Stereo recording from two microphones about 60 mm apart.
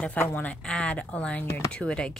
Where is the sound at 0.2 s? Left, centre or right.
Left.